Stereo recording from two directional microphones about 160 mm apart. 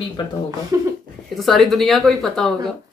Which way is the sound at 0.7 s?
20° right (ahead or behind).